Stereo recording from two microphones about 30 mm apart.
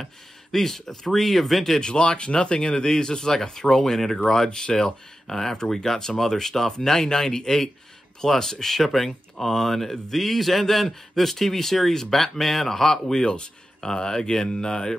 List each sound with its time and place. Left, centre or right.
0.0 s speech: centre
1.8 s speech: left
4.5 s speech: left
13.2 s speech: left